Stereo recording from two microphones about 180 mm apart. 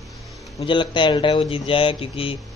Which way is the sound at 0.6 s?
25° left (ahead or behind).